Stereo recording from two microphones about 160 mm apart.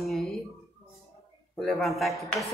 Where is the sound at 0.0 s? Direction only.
Centre (ahead or behind).